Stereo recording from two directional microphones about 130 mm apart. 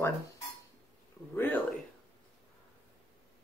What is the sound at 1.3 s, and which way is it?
Speech, 15° left (ahead or behind).